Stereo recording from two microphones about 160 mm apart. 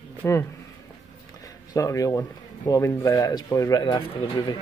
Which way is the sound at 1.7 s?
20° left (ahead or behind).